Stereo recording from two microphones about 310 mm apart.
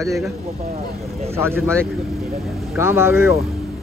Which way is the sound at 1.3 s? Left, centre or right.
Centre.